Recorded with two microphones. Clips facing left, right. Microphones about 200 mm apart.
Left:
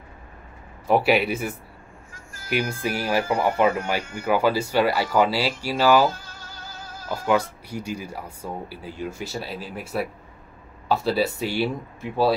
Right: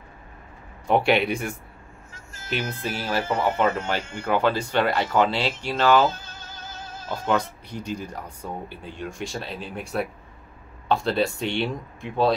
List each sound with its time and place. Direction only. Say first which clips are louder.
0.8 s speech: left 1 dB; 5° left (ahead or behind)
2.1 s a sound: right 1 dB; 25° right (ahead or behind)
2.7 s speech: left 3 dB; 10° left (ahead or behind)
3.3 s speech: left 1 dB; 20° right (ahead or behind)
4.2 s speech: left 2 dB; 10° left (ahead or behind)
6.0 s music: even; 20° right (ahead or behind)
7.2 s speech: left 2 dB; 10° left (ahead or behind)